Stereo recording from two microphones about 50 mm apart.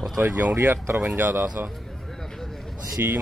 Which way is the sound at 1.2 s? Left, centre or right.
Right.